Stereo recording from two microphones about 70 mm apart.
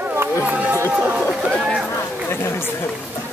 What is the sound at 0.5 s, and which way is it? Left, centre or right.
Run, right.